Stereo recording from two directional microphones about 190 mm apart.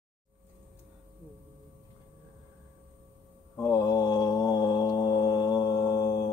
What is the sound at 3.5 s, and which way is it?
Mantra, 20° left (ahead or behind).